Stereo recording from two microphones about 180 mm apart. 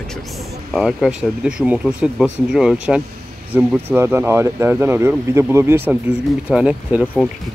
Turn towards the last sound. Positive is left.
turn(degrees=10)  # may be behind; listen again after turning